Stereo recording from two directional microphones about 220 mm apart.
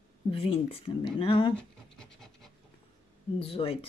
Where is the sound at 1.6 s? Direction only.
5° left (ahead or behind).